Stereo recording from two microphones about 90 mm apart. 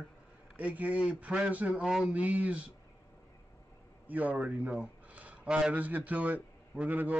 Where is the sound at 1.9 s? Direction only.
5° right (ahead or behind).